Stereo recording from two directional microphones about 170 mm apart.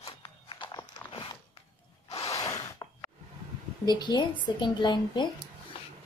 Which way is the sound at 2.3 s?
20° left (ahead or behind).